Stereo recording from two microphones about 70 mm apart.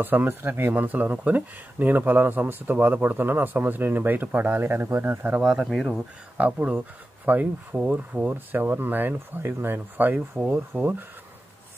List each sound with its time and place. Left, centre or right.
0.0 s speech: right
5.4 s speech: centre
5.7 s speech: centre
6.3 s speech: centre